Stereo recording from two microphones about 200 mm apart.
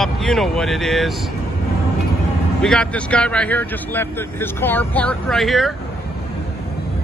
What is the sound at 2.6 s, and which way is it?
Speech, 5° left (ahead or behind).